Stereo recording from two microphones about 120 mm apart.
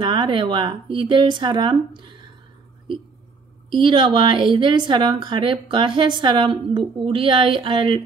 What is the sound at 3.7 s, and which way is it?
A woman's voice, 40° right (ahead or behind).